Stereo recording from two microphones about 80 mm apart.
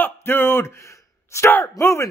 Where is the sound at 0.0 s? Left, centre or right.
Left.